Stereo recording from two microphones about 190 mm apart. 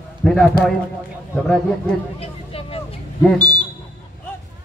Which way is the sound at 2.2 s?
30° left (ahead or behind).